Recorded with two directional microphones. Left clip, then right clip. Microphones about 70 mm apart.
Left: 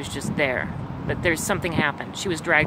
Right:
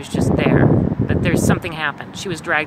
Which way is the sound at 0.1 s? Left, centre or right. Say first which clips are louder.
Right 7 dB; left.